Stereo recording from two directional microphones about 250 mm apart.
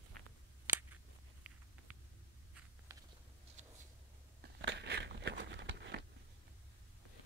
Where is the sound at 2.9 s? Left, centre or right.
Centre.